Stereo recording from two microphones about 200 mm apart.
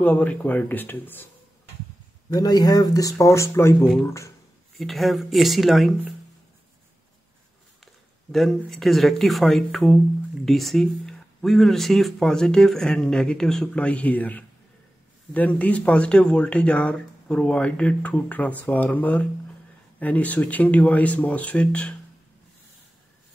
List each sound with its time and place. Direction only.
0.0 s speech: 10° left (ahead or behind)
2.2 s speech: 20° left (ahead or behind)
4.7 s speech: centre (ahead or behind)
7.8 s speech: centre (ahead or behind)